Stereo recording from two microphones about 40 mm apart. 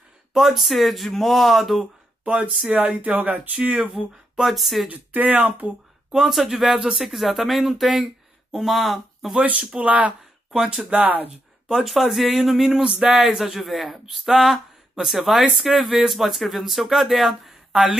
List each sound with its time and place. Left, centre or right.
0.3 s speech: centre
2.2 s speech: right
3.5 s speech: right
4.4 s speech: centre
4.8 s speech: right
6.1 s speech: centre
9.4 s speech: right
10.5 s speech: centre
13.4 s speech: centre